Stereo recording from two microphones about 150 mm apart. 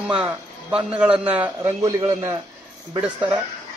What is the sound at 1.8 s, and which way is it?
A man's voice, 20° right (ahead or behind).